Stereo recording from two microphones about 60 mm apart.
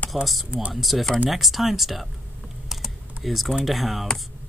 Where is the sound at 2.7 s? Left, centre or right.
Centre.